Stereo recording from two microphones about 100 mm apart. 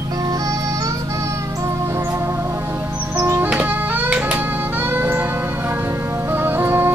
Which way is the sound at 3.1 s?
20° right (ahead or behind).